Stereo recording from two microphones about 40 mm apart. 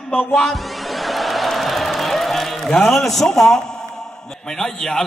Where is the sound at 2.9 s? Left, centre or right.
Centre.